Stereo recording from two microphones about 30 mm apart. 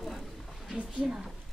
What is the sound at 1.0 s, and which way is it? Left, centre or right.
Speech, right.